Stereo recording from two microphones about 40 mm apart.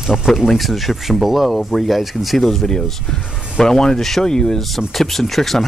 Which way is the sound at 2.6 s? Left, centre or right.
Centre.